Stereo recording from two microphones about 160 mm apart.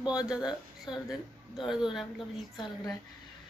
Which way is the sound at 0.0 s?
5° right (ahead or behind).